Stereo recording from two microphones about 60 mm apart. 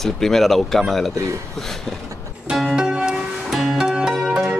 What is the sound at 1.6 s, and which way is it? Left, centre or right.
Speech, centre.